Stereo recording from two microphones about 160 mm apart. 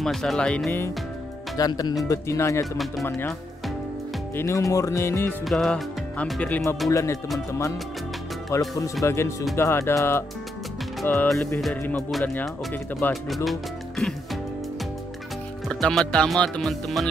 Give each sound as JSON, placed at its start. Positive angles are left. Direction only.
{"t": 0.0, "sound": "speech", "side_deg": 0}
{"t": 1.6, "sound": "speech", "side_deg": 25}
{"t": 4.4, "sound": "speech", "side_deg": 20}
{"t": 5.4, "sound": "music", "side_deg": 0}
{"t": 6.9, "sound": "speech", "side_deg": 20}
{"t": 8.5, "sound": "speech", "side_deg": 20}
{"t": 13.1, "sound": "speech", "side_deg": 0}
{"t": 15.7, "sound": "speech", "side_deg": 5}